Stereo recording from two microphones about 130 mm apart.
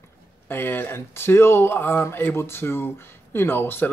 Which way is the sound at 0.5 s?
15° left (ahead or behind).